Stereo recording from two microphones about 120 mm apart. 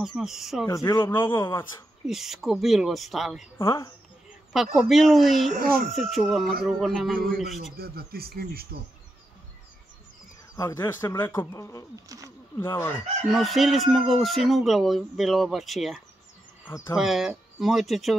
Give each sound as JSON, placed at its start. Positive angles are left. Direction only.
{"t": 0.0, "sound": "speech", "side_deg": -5}
{"t": 0.7, "sound": "a man's voice", "side_deg": 25}
{"t": 2.0, "sound": "speech", "side_deg": -5}
{"t": 3.5, "sound": "a man's voice", "side_deg": 30}
{"t": 4.7, "sound": "speech", "side_deg": 0}
{"t": 10.5, "sound": "a man's voice", "side_deg": 25}
{"t": 11.9, "sound": "speech", "side_deg": -30}
{"t": 12.5, "sound": "a man's voice", "side_deg": 20}
{"t": 13.3, "sound": "speech", "side_deg": 0}